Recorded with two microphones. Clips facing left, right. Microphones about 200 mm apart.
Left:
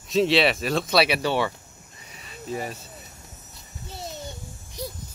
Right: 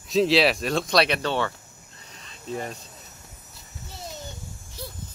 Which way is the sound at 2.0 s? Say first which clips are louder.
Left 6 dB; 10° left (ahead or behind).